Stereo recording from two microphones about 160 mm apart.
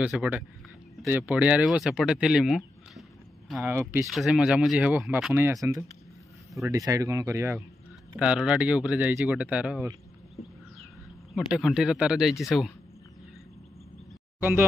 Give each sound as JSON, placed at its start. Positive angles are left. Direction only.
{"t": 0.0, "sound": "speech", "side_deg": -5}
{"t": 3.6, "sound": "speech", "side_deg": -15}
{"t": 4.1, "sound": "speech", "side_deg": -5}
{"t": 5.3, "sound": "speech", "side_deg": -15}
{"t": 8.2, "sound": "speech", "side_deg": -5}
{"t": 11.5, "sound": "speech", "side_deg": -5}
{"t": 14.4, "sound": "speech", "side_deg": -15}